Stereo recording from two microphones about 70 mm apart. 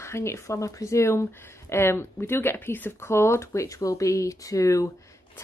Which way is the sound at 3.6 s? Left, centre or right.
Left.